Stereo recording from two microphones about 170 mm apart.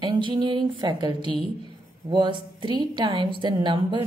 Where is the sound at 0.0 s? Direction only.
25° right (ahead or behind).